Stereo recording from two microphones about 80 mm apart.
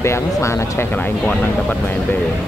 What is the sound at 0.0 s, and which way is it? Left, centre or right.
Speech, left.